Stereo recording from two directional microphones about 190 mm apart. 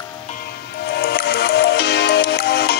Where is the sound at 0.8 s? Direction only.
60° left (ahead or behind).